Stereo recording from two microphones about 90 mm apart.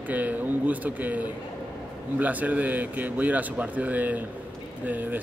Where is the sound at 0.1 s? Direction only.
15° right (ahead or behind).